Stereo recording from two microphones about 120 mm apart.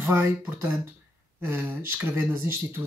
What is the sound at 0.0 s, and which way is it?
Speech, 20° right (ahead or behind).